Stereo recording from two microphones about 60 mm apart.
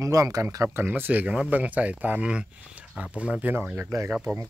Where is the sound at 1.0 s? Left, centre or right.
Right.